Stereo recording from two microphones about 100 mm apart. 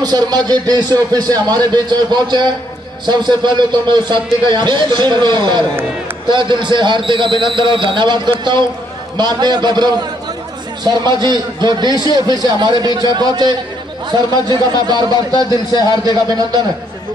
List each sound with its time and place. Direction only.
0.0 s a man's voice: 40° right (ahead or behind)